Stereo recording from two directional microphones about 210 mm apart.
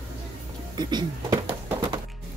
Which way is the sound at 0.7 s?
20° right (ahead or behind).